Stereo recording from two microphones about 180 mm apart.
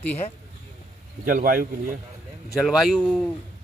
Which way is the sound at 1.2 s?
50° right (ahead or behind).